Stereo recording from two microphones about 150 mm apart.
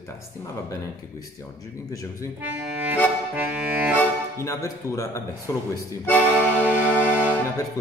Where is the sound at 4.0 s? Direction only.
20° left (ahead or behind).